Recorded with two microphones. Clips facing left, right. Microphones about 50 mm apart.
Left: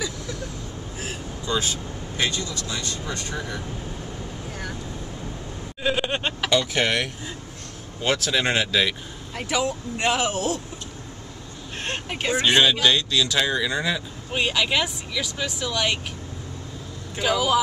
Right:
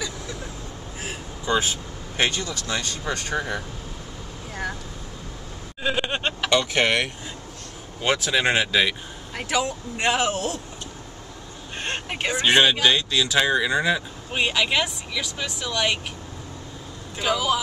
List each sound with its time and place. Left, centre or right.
1.4 s speech: right
2.1 s speech: right
5.9 s a sound: centre
8.0 s speech: centre
11.8 s speech: centre
14.4 s speech: centre
17.2 s speech: centre